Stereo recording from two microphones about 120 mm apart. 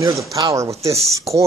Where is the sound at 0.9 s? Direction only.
Centre (ahead or behind).